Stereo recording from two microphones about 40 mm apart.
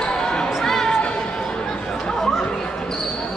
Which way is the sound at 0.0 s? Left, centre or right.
Centre.